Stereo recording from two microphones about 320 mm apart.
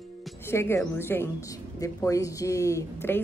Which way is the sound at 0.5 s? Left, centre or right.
Centre.